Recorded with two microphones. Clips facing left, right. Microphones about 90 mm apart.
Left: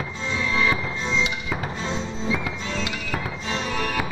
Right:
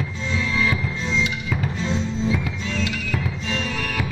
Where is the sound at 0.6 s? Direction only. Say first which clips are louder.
Even; 20° left (ahead or behind).